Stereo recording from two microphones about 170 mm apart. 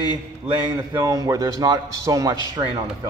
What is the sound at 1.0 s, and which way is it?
A man's voice, 20° right (ahead or behind).